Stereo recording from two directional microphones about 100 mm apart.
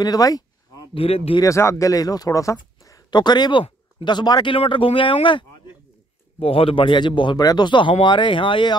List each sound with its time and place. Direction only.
0.0 s speech: 40° left (ahead or behind)
0.9 s speech: 80° left
1.4 s speech: 30° left (ahead or behind)
3.1 s speech: 45° left (ahead or behind)
6.4 s speech: 70° left (ahead or behind)